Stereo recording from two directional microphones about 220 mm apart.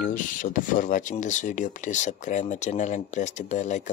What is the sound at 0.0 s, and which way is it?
Speech, 35° left (ahead or behind).